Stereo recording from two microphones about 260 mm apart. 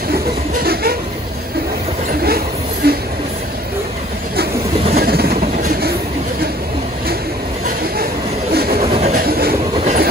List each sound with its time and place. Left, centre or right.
0.6 s vehicle: right
2.0 s a sound: right
4.9 s train: right
8.8 s pigeon: right
9.2 s train: right